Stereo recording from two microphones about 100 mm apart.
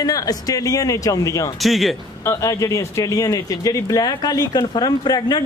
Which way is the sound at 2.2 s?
30° left (ahead or behind).